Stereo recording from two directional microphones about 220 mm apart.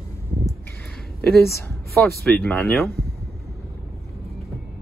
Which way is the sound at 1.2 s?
10° left (ahead or behind).